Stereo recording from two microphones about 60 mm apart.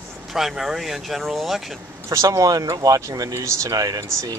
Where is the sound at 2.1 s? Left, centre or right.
Right.